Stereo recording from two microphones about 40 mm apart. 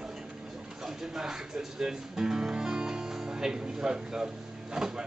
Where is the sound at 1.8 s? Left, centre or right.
Centre.